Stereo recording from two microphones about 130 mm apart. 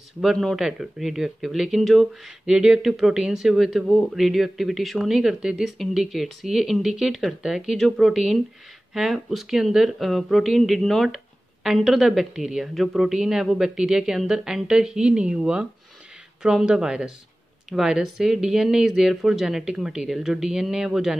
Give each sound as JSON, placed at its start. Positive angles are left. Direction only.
{"t": 0.2, "sound": "speech", "side_deg": 0}